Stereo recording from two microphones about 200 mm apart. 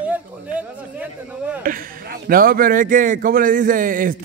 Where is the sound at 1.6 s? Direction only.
45° right (ahead or behind).